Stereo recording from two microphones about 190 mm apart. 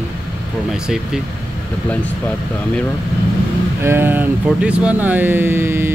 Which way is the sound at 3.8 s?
10° right (ahead or behind).